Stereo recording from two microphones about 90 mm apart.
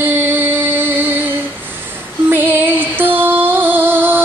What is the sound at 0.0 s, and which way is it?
Music, 25° right (ahead or behind).